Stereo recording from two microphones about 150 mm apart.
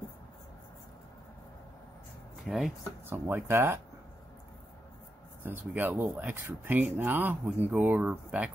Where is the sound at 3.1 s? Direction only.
15° right (ahead or behind).